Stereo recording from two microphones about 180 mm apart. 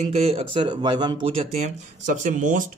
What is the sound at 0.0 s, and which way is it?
A man's voice, 35° right (ahead or behind).